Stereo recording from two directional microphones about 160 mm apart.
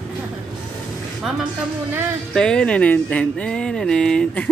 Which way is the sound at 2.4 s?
5° left (ahead or behind).